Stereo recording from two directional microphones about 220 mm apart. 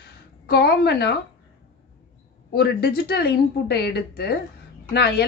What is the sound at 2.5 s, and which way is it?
A woman's voice, 50° left (ahead or behind).